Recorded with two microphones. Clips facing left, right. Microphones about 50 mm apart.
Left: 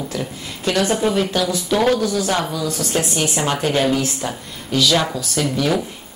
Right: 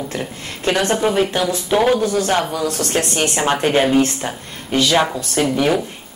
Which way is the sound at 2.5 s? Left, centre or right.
Right.